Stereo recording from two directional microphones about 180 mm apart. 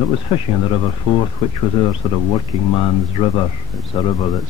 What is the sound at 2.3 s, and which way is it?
Speech, 30° left (ahead or behind).